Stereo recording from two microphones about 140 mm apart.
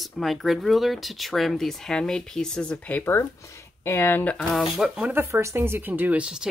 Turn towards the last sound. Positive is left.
turn(degrees=-5)  # may be behind; listen again after turning